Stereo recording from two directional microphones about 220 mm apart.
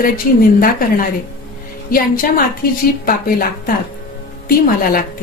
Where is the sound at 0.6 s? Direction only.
40° left (ahead or behind).